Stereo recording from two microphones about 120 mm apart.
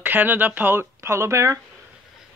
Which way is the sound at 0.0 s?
15° right (ahead or behind).